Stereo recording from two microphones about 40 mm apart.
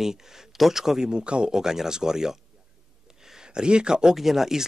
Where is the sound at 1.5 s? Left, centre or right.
Centre.